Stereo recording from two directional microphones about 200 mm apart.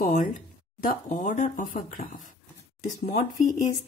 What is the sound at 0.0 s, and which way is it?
A woman's voice, 40° left (ahead or behind).